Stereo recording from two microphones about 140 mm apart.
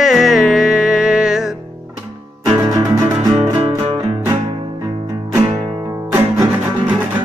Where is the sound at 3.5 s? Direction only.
40° right (ahead or behind).